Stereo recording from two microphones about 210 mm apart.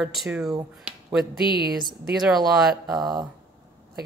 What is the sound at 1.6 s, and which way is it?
Speech, 45° right (ahead or behind).